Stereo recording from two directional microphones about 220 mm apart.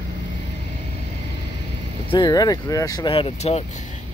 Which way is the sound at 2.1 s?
20° left (ahead or behind).